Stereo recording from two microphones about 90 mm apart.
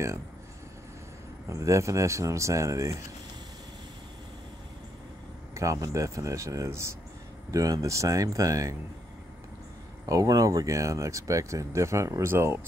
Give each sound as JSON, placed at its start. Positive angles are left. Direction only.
{"t": 1.5, "sound": "speech", "side_deg": -35}
{"t": 5.5, "sound": "speech", "side_deg": -35}
{"t": 10.0, "sound": "speech", "side_deg": -40}